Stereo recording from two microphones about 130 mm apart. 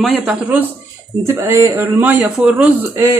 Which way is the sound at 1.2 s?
20° right (ahead or behind).